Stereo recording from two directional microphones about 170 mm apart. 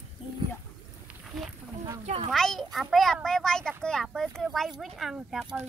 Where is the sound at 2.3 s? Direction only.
5° left (ahead or behind).